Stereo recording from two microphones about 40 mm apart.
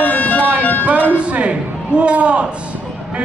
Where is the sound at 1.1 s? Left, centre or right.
Right.